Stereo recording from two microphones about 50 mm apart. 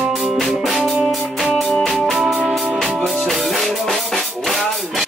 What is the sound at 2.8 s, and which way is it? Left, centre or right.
Music, centre.